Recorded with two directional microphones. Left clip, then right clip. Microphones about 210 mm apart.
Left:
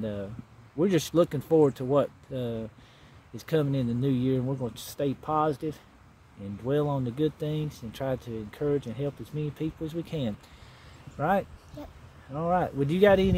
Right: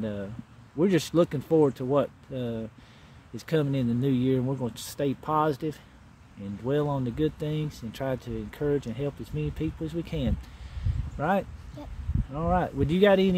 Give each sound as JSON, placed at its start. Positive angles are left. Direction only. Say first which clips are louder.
{"t": 0.0, "sound": "speech", "louder": "even", "side_deg": -5}